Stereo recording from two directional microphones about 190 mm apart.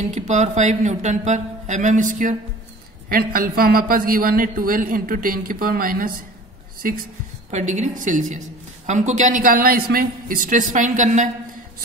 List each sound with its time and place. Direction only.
0.3 s a man's voice: 40° right (ahead or behind)